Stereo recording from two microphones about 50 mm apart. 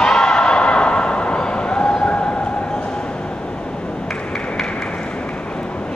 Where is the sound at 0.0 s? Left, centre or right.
Centre.